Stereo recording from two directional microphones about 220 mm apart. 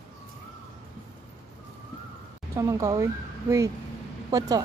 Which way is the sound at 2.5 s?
15° right (ahead or behind).